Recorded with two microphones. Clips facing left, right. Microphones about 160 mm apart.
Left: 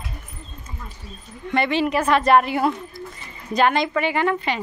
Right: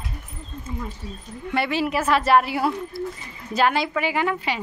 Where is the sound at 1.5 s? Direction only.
5° right (ahead or behind).